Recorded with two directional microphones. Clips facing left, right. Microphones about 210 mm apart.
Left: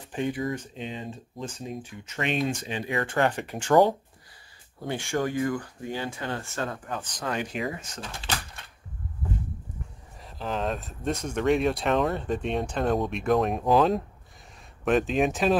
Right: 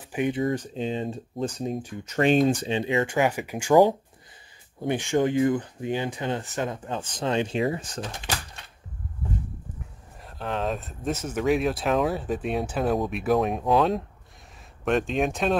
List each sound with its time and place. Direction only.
0.0 s a sound: 10° right (ahead or behind)
0.3 s speech: 25° right (ahead or behind)
3.2 s speech: 10° right (ahead or behind); by 8.0 s 30° right (ahead or behind)
10.2 s speech: centre (ahead or behind)